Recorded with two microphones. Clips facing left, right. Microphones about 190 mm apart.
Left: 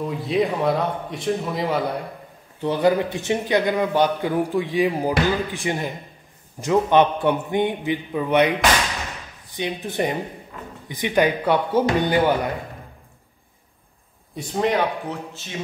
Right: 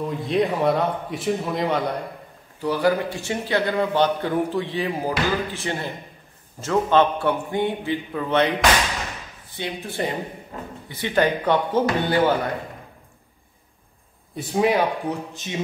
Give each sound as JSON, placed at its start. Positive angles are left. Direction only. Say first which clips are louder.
{"t": 0.0, "sound": "speech", "louder": "even", "side_deg": 0}
{"t": 2.6, "sound": "a man's voice", "louder": "left 2 dB", "side_deg": 20}
{"t": 10.5, "sound": "a man's voice", "louder": "right 5 dB", "side_deg": -40}
{"t": 10.9, "sound": "a man's voice", "louder": "left 1 dB", "side_deg": 15}
{"t": 14.3, "sound": "speech", "louder": "right 2 dB", "side_deg": -10}